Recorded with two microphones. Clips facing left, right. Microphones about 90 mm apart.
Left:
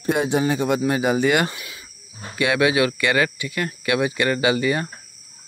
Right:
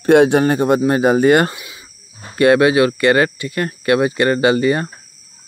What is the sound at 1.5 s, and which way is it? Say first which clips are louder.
Cricket: right 2 dB; 20° right (ahead or behind).